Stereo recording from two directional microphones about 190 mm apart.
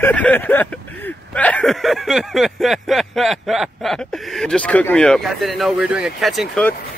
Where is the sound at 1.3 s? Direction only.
5° left (ahead or behind).